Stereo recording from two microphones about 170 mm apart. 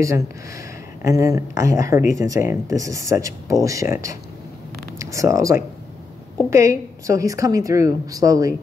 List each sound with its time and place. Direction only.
1.0 s a woman's voice: 20° right (ahead or behind)